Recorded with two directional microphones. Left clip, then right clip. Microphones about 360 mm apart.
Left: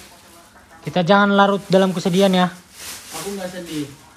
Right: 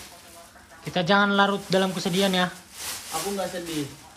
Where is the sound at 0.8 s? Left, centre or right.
Centre.